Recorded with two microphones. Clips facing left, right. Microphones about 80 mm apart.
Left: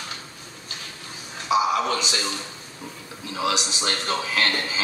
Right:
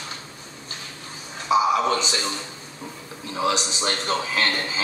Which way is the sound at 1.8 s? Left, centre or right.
Right.